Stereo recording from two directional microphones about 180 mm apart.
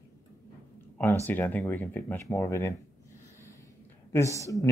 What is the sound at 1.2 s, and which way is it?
Speech, 10° left (ahead or behind).